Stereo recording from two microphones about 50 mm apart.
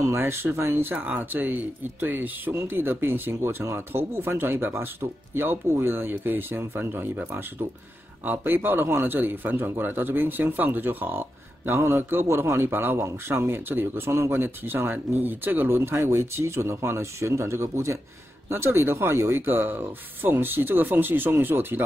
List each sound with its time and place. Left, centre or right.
0.2 s speech: right
0.9 s speech: right
2.5 s speech: right
8.3 s speech: right
13.0 s speech: right
13.7 s speech: right
18.5 s speech: right